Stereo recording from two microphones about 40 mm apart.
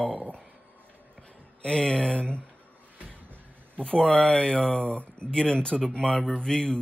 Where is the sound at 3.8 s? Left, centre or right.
Left.